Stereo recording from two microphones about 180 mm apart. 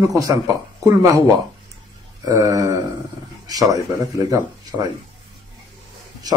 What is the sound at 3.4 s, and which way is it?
A man's voice, 20° right (ahead or behind).